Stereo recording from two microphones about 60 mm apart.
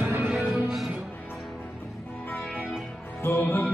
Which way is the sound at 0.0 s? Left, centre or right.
Right.